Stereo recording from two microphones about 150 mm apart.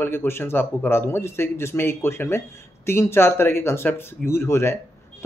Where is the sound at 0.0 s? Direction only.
15° left (ahead or behind).